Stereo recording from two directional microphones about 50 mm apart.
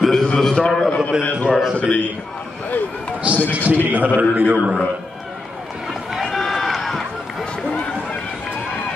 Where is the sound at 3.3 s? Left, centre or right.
Right.